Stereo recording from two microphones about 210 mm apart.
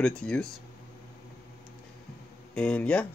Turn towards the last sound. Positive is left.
turn(degrees=5)  # may be behind; listen again after turning